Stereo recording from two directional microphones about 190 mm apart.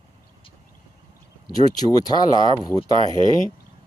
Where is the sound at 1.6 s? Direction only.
20° left (ahead or behind).